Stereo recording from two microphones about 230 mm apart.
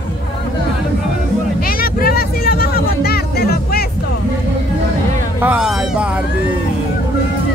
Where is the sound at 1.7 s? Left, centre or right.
Left.